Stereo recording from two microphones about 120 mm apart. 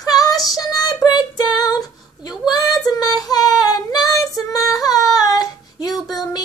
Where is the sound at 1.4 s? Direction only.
35° left (ahead or behind).